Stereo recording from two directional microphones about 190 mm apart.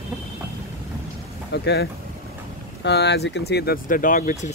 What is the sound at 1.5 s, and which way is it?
Speech, 65° left (ahead or behind).